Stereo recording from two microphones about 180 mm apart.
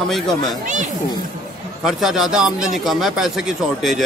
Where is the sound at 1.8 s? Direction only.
5° right (ahead or behind).